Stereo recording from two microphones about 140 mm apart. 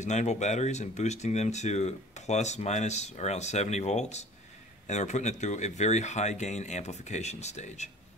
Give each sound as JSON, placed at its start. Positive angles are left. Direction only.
{"t": 0.0, "sound": "speech", "side_deg": 55}